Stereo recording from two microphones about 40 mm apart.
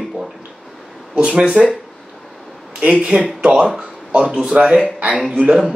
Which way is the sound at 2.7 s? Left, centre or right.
Right.